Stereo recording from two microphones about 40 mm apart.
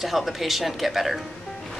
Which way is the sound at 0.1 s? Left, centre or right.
Centre.